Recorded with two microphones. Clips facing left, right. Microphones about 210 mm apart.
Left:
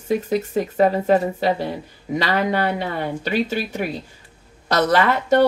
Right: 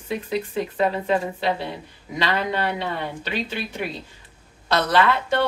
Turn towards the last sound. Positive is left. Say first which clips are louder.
# left 4 dB
turn(degrees=45)  # may be behind; listen again after turning